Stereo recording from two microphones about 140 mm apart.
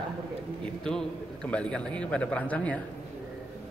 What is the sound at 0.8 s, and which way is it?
A man's voice, 5° left (ahead or behind).